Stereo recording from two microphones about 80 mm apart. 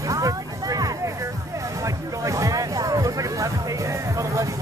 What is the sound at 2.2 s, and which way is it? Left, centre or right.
Music, right.